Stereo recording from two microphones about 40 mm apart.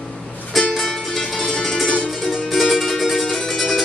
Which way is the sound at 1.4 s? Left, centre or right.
Centre.